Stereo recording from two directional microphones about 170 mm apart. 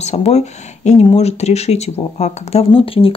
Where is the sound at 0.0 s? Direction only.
40° left (ahead or behind).